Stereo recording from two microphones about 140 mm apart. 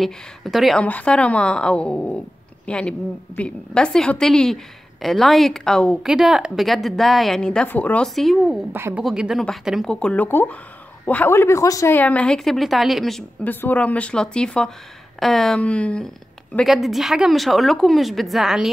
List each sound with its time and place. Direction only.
0.0 s a woman's voice: centre (ahead or behind)
8.7 s a woman's voice: 15° right (ahead or behind)
9.0 s a woman's voice: 5° right (ahead or behind); by 12.0 s 25° left (ahead or behind)
12.0 s a woman's voice: 10° left (ahead or behind)
13.4 s a woman's voice: 15° left (ahead or behind); by 18.7 s centre (ahead or behind)